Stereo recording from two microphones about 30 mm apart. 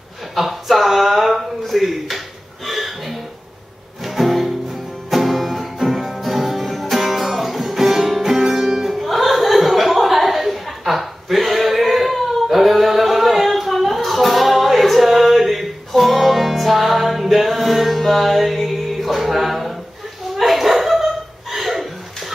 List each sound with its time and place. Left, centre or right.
0.4 s a sound: centre
4.0 s music: centre
20.3 s dog: centre